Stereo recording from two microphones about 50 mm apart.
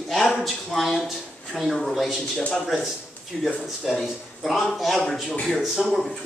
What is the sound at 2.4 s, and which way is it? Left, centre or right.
Speech, centre.